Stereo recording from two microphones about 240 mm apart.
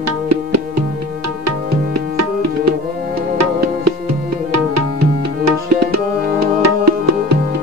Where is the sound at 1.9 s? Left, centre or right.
Right.